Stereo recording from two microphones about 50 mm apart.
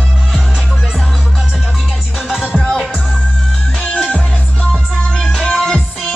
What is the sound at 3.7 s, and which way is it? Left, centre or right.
Music, left.